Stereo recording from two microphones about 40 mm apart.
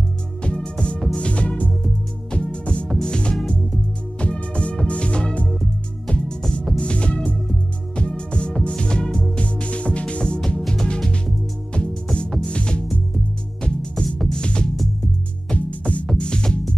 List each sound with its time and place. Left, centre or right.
0.4 s music: left
9.4 s music: left
15.5 s music: left
16.2 s music: left